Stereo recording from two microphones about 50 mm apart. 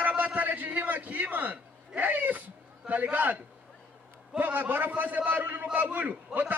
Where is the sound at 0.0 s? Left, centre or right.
Right.